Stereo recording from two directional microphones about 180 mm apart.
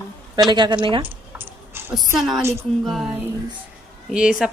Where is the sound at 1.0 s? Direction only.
10° right (ahead or behind).